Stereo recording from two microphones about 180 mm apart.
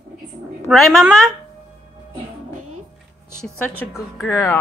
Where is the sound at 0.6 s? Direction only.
Centre (ahead or behind).